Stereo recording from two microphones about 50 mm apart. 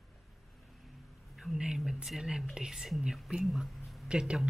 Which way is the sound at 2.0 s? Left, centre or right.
Centre.